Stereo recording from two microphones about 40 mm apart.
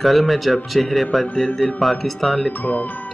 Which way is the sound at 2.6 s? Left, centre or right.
Left.